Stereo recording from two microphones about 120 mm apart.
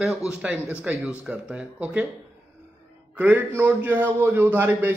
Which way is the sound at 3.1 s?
15° right (ahead or behind).